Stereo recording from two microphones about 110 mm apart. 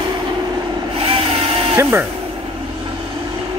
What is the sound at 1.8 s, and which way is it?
Speech, 20° right (ahead or behind).